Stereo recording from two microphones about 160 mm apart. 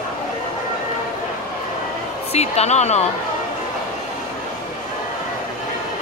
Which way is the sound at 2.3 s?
40° left (ahead or behind).